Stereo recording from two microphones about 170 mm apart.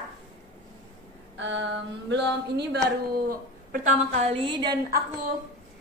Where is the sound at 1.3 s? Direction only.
90° right; by 4.2 s 50° right (ahead or behind).